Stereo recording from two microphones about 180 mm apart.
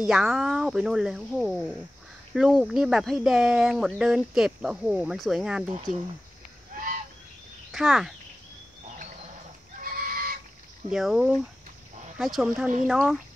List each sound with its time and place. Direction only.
0.0 s speech: centre (ahead or behind)
6.7 s a sound: 50° right (ahead or behind)
7.7 s speech: centre (ahead or behind)
9.8 s fowl: 55° right (ahead or behind)
10.9 s speech: centre (ahead or behind)